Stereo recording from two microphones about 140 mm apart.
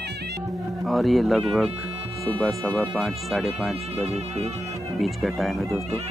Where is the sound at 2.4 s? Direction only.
Centre (ahead or behind).